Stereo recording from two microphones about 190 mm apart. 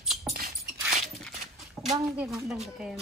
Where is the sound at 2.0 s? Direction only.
5° right (ahead or behind).